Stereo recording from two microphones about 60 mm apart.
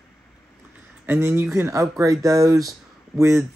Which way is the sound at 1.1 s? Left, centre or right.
Right.